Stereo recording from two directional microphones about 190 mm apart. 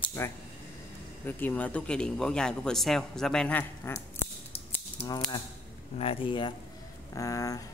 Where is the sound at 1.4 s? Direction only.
10° left (ahead or behind).